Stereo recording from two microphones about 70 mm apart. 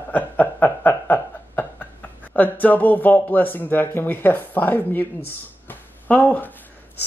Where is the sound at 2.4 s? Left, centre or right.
Left.